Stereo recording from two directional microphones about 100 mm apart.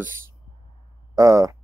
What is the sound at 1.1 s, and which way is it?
Speech, 35° right (ahead or behind).